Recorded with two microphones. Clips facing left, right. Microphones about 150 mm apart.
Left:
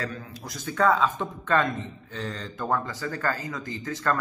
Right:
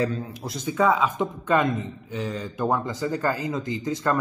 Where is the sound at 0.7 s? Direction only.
5° right (ahead or behind).